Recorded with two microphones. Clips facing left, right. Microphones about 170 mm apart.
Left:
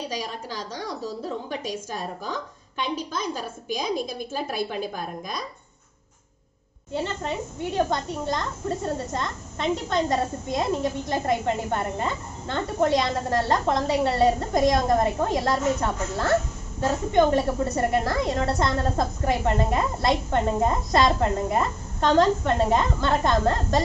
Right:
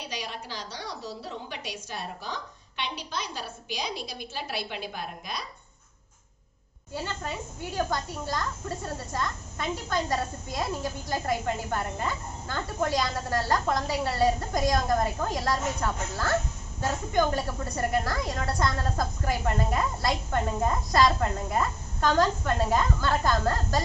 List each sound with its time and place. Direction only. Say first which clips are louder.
0.0 s a woman's voice: left 5 dB; 40° left (ahead or behind)
6.9 s a woman's voice: left 6 dB; 25° left (ahead or behind)